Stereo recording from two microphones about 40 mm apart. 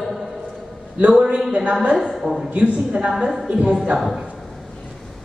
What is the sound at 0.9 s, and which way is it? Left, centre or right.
Speech, right.